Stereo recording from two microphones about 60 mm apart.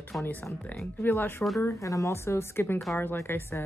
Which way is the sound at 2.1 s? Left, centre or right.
Left.